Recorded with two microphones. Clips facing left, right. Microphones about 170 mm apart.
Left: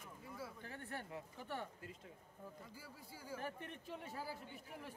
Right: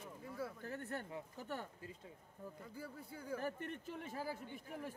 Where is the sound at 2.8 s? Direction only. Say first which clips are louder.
Right 6 dB; 60° right (ahead or behind).